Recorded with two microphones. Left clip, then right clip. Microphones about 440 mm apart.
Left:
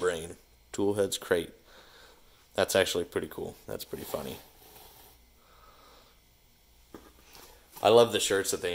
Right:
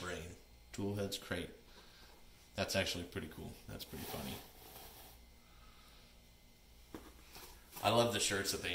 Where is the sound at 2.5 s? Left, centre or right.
Centre.